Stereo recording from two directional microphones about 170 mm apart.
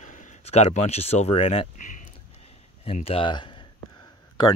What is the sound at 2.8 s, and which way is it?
Speech, 35° left (ahead or behind).